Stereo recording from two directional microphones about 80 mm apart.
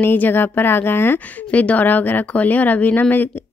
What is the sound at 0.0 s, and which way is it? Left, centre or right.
A woman's voice, left.